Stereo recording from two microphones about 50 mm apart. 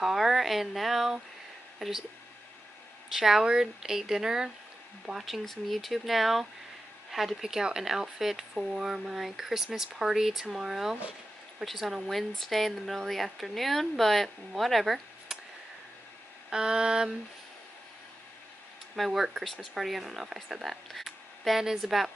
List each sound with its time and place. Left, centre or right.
0.0 s speech: centre
3.1 s speech: centre
5.2 s speech: centre
16.4 s speech: centre
18.9 s a woman's voice: centre